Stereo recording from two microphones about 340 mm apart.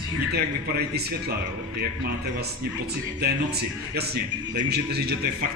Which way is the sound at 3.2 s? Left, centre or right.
Right.